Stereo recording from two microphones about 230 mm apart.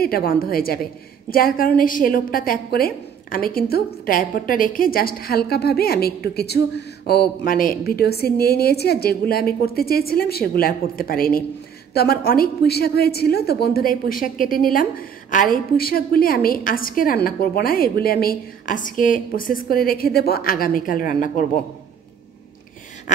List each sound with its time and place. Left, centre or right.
0.0 s a woman's voice: left
23.1 s a woman's voice: left